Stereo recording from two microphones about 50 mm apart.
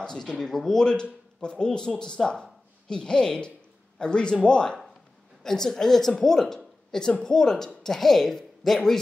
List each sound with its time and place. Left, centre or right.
0.0 s a woman's voice: centre